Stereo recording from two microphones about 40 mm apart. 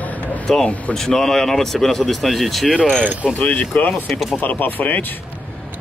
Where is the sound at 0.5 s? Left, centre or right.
Centre.